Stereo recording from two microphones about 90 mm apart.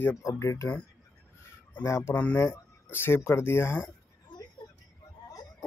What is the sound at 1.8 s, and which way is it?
Speech, 30° left (ahead or behind).